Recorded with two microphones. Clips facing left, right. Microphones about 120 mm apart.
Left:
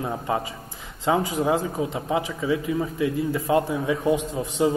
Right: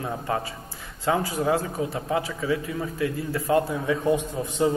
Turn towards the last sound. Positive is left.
turn(degrees=15)  # may be behind; listen again after turning